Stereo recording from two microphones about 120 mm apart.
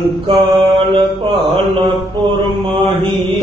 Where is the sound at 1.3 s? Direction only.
Centre (ahead or behind).